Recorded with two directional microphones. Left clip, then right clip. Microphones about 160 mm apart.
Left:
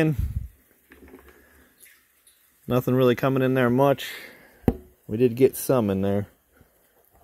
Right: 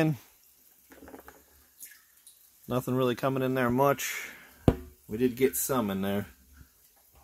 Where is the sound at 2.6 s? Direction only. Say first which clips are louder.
Left 8 dB; 25° left (ahead or behind).